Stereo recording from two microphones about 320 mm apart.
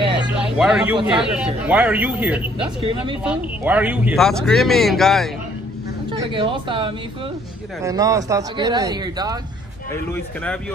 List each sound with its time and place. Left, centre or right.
0.6 s speech: centre
2.8 s speech: centre
3.3 s speech: centre
6.1 s speech: centre
10.1 s speech: centre